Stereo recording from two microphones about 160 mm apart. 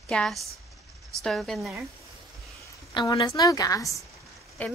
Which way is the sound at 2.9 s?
30° left (ahead or behind).